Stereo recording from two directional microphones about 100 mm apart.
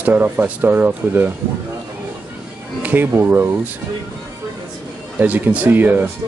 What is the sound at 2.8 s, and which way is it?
Speech, 15° right (ahead or behind).